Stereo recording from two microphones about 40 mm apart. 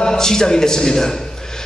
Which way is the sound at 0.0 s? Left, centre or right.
Centre.